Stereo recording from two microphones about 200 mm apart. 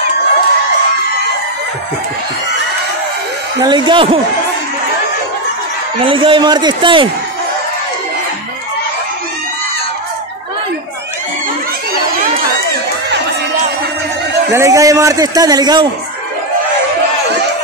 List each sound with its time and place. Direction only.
3.6 s a man's voice: 25° right (ahead or behind)
6.0 s a man's voice: 25° right (ahead or behind)
14.5 s a man's voice: 15° right (ahead or behind)